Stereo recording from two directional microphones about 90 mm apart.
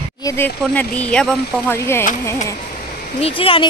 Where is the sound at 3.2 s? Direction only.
90° left.